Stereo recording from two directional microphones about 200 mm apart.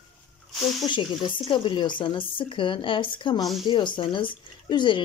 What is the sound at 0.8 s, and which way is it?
Speech, 20° left (ahead or behind).